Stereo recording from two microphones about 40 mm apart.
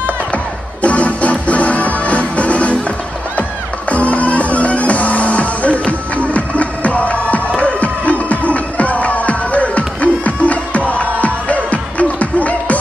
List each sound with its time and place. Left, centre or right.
0.8 s music: left
3.9 s music: left